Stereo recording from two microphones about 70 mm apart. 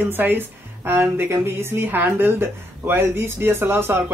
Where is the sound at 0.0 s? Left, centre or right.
Right.